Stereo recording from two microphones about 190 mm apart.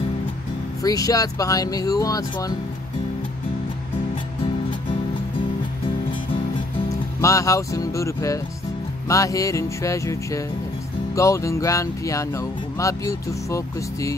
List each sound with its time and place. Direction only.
0.8 s speech: 20° left (ahead or behind)
7.2 s music: 15° left (ahead or behind)